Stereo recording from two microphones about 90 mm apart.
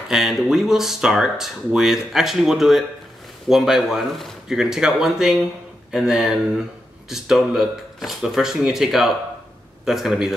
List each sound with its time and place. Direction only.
0.1 s speech: 5° right (ahead or behind)